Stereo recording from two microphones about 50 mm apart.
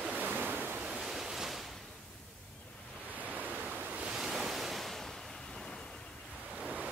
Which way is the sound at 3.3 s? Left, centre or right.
Right.